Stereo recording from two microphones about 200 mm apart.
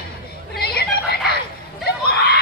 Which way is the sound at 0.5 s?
50° left (ahead or behind).